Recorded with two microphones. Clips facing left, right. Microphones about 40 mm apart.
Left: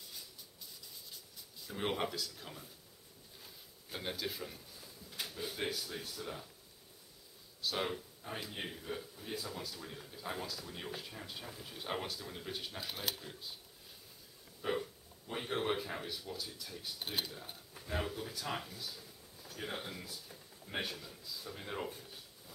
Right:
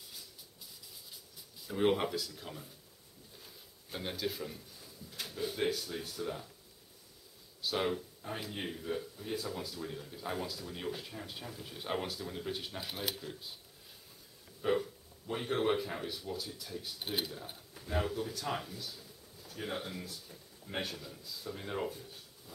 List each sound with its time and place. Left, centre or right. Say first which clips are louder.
1.1 s speech: even; centre
3.3 s a sound: even; centre
5.2 s a man's voice: right 5 dB; centre
7.6 s a man's voice: right 4 dB; centre
14.6 s a man's voice: right 5 dB; centre